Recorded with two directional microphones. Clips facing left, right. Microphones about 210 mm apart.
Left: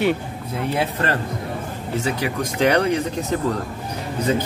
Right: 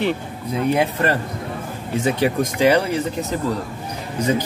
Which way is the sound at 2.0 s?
30° right (ahead or behind).